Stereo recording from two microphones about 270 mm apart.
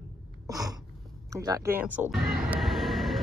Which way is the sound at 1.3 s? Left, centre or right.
Centre.